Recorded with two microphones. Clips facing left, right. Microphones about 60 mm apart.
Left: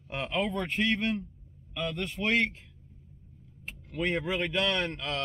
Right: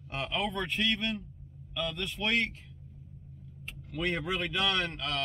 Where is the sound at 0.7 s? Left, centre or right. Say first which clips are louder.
Left 3 dB; centre.